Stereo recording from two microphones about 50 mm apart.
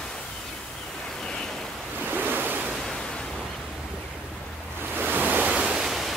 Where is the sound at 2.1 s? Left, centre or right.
Right.